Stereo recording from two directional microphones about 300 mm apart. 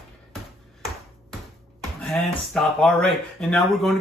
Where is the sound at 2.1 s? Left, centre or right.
Centre.